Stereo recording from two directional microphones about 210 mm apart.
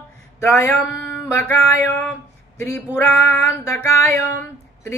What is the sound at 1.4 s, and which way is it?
Male singing, 10° left (ahead or behind).